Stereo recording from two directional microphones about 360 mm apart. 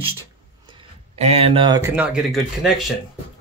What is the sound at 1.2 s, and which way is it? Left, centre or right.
Speech, centre.